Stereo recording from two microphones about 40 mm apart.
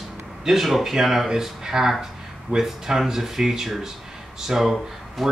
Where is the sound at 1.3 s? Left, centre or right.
Centre.